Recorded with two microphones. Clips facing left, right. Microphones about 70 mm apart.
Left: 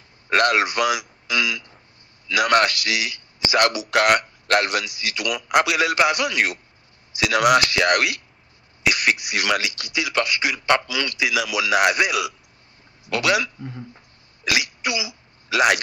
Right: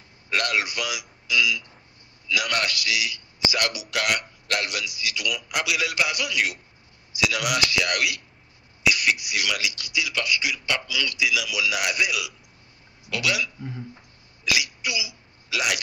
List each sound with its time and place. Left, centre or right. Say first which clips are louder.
0.3 s a man's voice: left 7 dB; left
13.6 s speech: left 1 dB; centre
14.4 s sneeze: left 3 dB; left